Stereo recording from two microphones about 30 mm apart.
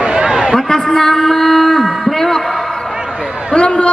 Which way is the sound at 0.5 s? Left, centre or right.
Centre.